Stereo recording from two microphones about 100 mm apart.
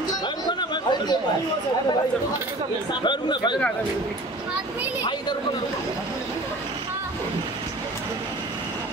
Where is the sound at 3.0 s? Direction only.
50° left (ahead or behind).